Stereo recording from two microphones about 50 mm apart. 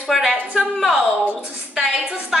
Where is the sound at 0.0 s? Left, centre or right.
Centre.